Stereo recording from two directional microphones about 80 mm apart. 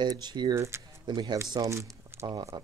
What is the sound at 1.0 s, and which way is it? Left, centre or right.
Speech, right.